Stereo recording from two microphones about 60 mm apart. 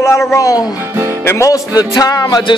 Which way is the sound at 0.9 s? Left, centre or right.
Right.